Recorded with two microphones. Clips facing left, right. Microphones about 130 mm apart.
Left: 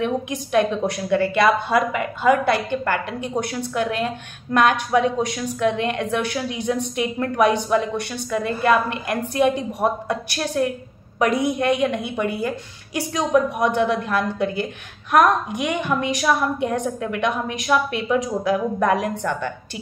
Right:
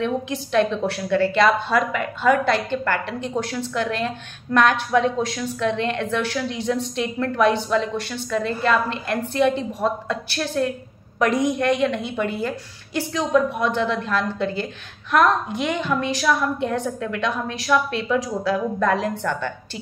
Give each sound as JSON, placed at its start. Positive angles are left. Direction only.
{"t": 0.0, "sound": "a woman's voice", "side_deg": 15}